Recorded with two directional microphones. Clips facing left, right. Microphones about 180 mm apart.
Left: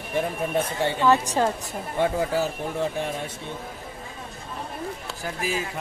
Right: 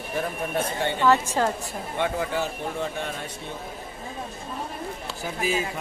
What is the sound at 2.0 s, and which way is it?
Speech, 35° left (ahead or behind).